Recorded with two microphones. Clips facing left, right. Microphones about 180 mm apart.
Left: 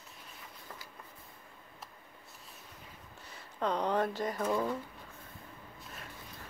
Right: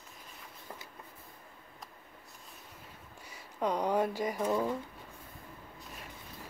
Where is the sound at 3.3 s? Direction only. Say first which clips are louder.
Right 1 dB; 10° right (ahead or behind).